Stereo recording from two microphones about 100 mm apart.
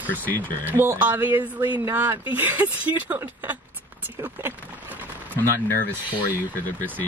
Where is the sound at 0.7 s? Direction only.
20° right (ahead or behind).